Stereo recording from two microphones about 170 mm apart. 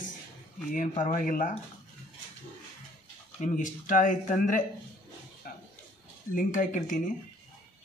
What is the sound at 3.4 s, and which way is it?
Speech, 50° left (ahead or behind).